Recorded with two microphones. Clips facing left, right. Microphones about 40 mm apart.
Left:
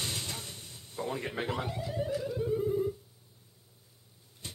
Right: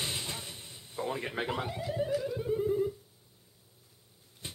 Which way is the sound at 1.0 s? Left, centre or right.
Centre.